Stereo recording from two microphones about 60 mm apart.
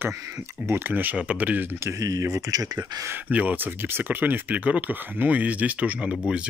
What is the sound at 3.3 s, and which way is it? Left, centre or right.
Speech, right.